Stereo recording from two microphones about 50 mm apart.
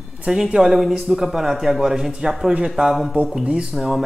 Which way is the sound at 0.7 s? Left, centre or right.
Centre.